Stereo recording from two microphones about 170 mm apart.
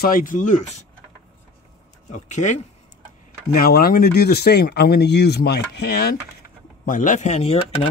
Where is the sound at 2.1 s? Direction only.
45° left (ahead or behind).